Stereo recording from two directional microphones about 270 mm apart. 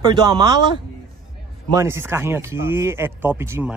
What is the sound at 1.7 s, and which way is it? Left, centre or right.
Speech, centre.